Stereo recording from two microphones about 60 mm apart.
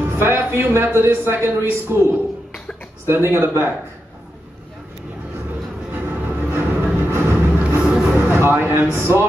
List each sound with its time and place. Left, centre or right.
0.0 s a man's voice: right
3.3 s speech: right
6.0 s train: right
7.0 s vehicle: right
7.3 s vehicle: right
8.1 s a sound: right
8.9 s speech: right